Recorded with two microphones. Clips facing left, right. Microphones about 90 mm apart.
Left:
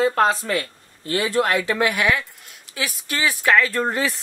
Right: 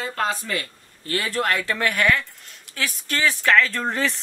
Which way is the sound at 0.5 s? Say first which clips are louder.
Left 4 dB; 20° left (ahead or behind).